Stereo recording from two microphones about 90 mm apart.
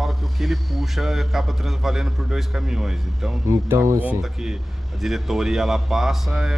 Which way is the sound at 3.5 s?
35° right (ahead or behind).